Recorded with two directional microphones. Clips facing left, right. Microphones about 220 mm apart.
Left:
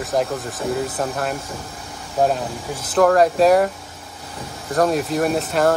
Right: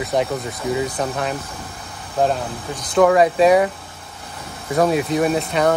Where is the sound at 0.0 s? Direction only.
Centre (ahead or behind).